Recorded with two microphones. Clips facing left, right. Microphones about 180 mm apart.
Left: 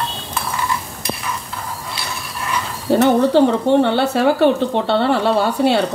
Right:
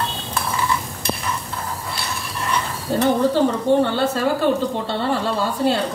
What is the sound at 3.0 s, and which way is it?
A woman's voice, 70° left (ahead or behind).